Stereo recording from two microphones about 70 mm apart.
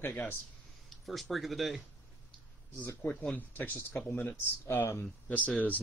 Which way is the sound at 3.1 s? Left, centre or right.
Centre.